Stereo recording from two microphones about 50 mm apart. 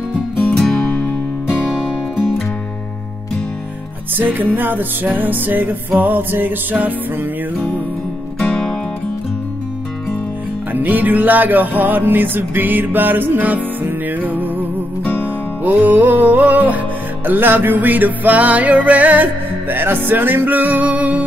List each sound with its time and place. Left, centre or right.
0.6 s music: centre
4.2 s music: right
8.4 s music: centre
10.7 s music: right
19.7 s music: right